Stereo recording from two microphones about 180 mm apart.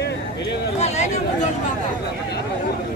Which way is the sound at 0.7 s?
35° left (ahead or behind).